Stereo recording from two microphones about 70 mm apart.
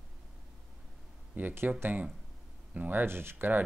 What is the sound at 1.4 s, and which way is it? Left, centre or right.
Speech, right.